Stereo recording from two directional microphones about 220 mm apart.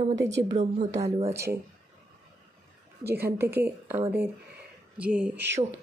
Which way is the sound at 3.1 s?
10° right (ahead or behind).